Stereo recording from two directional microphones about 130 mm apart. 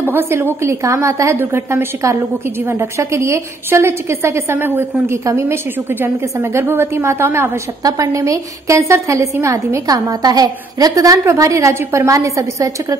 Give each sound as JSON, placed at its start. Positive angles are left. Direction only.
{"t": 0.0, "sound": "a woman's voice", "side_deg": -20}